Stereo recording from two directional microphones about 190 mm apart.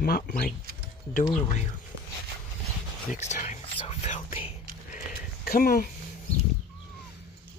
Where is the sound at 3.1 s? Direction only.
40° left (ahead or behind).